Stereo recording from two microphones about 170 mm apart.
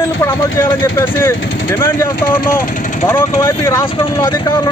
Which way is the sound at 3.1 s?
15° left (ahead or behind).